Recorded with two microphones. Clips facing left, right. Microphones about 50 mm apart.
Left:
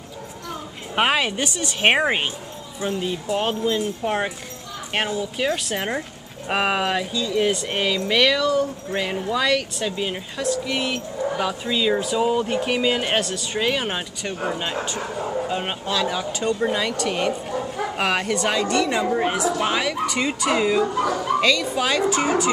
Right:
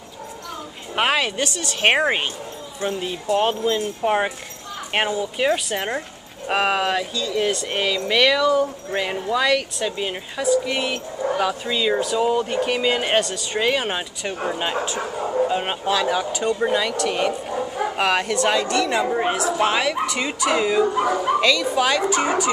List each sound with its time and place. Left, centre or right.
0.9 s speech: centre
20.9 s speech: centre
21.4 s speech: centre